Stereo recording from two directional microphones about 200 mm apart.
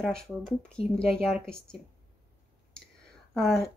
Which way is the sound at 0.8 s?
30° left (ahead or behind).